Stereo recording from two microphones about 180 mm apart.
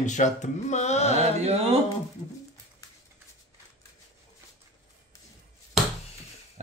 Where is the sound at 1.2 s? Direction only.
35° right (ahead or behind).